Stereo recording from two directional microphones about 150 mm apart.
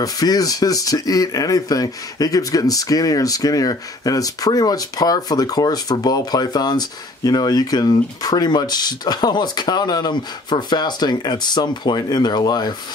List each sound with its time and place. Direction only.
0.0 s speech: 25° left (ahead or behind)